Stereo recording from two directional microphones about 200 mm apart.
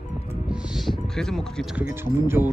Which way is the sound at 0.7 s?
Centre (ahead or behind).